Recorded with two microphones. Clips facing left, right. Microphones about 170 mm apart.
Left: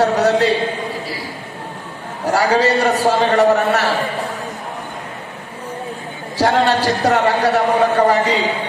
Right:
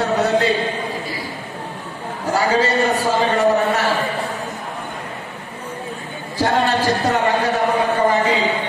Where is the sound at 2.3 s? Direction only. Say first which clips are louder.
Left 3 dB; 75° left (ahead or behind).